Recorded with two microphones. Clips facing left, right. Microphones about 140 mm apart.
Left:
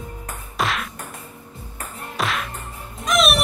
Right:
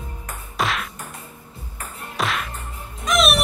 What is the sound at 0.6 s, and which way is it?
Music, centre (ahead or behind).